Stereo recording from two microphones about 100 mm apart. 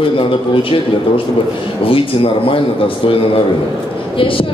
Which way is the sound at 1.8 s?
65° left (ahead or behind).